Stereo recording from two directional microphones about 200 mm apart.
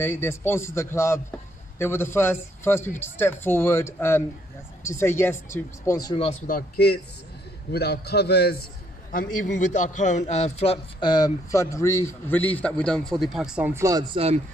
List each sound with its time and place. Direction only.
0.0 s speech: 10° left (ahead or behind)
6.4 s a man's voice: 50° left (ahead or behind)
9.1 s a man's voice: 45° left (ahead or behind); by 14.4 s 30° right (ahead or behind)